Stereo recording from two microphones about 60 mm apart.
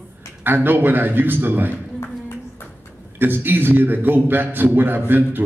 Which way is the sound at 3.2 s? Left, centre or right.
Right.